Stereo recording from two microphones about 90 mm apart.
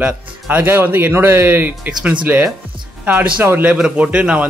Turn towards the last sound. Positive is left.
turn(degrees=-10)  # may be behind; listen again after turning